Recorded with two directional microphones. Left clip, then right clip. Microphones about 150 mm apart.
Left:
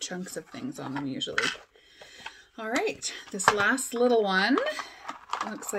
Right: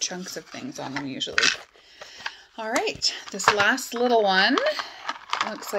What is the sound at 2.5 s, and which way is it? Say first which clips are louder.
Speech: right 3 dB; 40° right (ahead or behind).